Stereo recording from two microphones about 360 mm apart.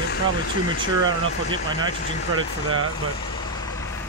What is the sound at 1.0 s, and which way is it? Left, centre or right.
Speech, centre.